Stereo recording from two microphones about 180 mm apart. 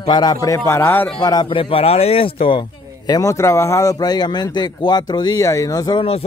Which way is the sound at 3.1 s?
20° left (ahead or behind).